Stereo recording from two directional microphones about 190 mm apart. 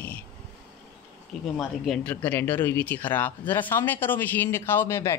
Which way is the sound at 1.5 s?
Centre (ahead or behind).